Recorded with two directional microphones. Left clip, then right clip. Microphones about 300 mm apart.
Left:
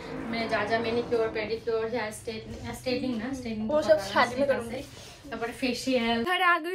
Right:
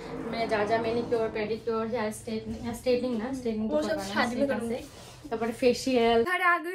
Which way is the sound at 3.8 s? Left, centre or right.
Centre.